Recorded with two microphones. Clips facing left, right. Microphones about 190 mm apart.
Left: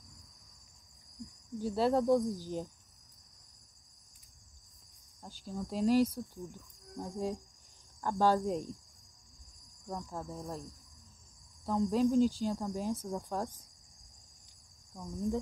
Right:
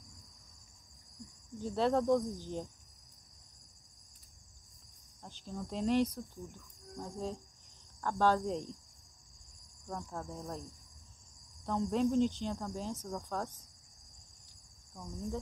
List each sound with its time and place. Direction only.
1.6 s speech: 5° left (ahead or behind)
5.2 s cricket: 5° left (ahead or behind)
8.0 s speech: 15° left (ahead or behind)
9.8 s cricket: 5° left (ahead or behind)
11.6 s speech: 5° left (ahead or behind)
15.0 s speech: 15° left (ahead or behind)